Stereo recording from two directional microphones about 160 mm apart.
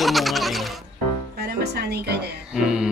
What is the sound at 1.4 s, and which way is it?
Speech, 85° right.